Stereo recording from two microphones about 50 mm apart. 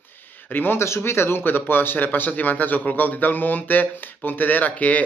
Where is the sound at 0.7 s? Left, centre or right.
Left.